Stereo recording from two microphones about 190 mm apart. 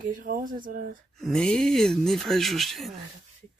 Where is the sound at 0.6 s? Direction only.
50° right (ahead or behind).